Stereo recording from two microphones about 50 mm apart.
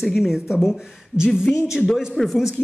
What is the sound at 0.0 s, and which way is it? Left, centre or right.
A woman's voice, centre.